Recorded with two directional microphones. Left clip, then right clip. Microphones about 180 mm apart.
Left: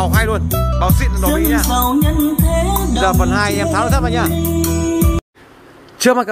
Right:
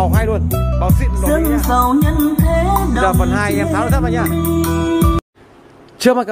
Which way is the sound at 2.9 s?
Centre (ahead or behind).